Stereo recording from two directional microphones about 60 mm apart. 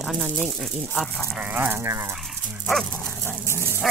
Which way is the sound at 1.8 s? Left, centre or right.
Right.